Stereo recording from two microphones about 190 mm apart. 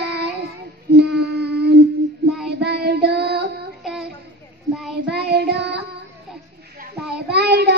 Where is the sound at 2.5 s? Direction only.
60° right (ahead or behind).